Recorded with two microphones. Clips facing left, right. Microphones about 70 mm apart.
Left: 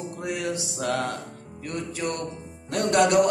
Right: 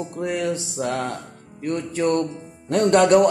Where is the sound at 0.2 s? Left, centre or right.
Right.